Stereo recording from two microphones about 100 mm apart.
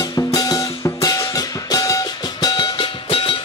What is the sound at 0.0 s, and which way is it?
Music, 40° left (ahead or behind).